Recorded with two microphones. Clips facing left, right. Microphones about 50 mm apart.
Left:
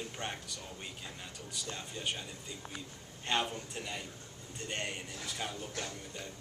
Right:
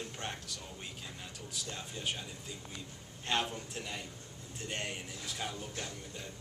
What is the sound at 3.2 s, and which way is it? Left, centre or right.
A man's voice, centre.